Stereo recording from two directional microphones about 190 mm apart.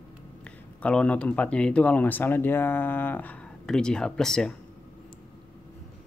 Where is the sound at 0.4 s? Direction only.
5° left (ahead or behind).